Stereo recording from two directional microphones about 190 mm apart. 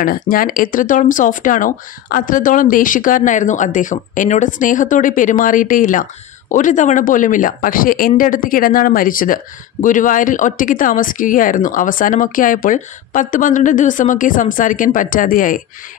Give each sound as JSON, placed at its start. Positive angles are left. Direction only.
{"t": 0.0, "sound": "speech", "side_deg": 50}